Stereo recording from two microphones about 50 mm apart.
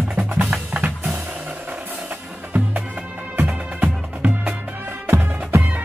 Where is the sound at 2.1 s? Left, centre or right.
Right.